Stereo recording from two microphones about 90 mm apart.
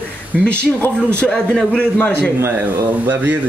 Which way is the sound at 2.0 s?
20° left (ahead or behind).